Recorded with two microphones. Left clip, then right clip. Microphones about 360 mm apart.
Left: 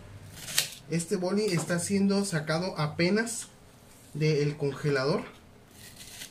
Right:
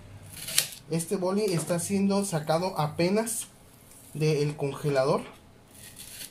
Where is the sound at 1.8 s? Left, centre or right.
Centre.